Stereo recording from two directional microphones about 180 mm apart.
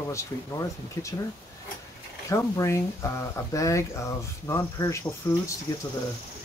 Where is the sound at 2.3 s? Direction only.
15° left (ahead or behind).